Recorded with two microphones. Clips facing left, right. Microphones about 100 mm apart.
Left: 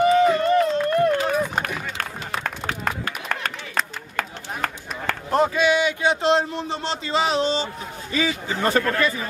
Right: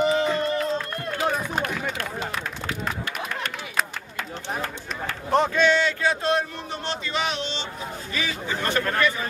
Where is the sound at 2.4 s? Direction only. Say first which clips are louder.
Left 3 dB; 65° left (ahead or behind).